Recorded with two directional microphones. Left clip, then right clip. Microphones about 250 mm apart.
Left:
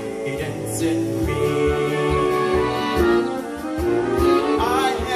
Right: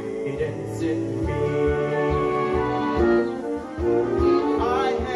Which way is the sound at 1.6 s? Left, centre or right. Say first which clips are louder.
Even; left.